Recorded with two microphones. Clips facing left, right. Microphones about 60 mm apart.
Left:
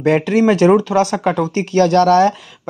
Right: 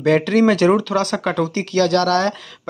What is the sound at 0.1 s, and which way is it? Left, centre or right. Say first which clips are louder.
Speech: left 1 dB; left.